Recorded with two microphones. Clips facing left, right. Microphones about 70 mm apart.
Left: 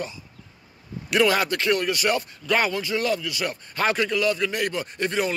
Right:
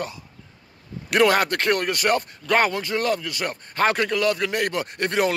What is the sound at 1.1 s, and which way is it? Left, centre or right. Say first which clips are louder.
A man's voice: right 2 dB; right.